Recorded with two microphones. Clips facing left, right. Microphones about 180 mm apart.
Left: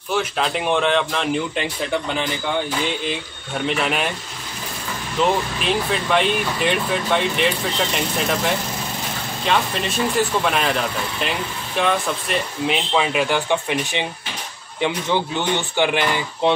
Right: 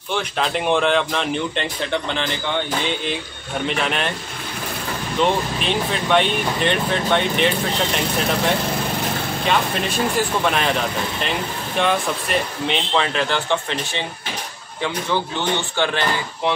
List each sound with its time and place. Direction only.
0.1 s speech: 5° left (ahead or behind)
5.2 s speech: centre (ahead or behind)
9.5 s speech: centre (ahead or behind)